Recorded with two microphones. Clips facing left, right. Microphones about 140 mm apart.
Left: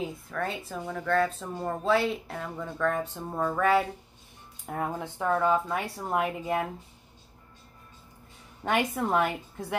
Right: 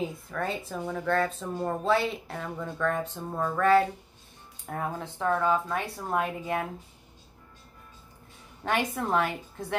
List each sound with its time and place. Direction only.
0.0 s speech: centre (ahead or behind)
8.6 s speech: 10° left (ahead or behind)